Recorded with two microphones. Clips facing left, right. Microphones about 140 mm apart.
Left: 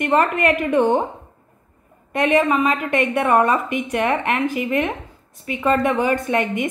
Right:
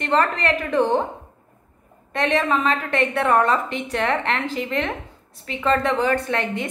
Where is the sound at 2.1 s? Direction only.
15° left (ahead or behind).